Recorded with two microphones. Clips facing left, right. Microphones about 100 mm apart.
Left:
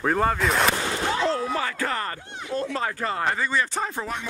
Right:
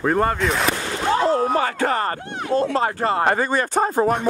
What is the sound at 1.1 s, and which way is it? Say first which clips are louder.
Speech: right 8 dB; 40° right (ahead or behind).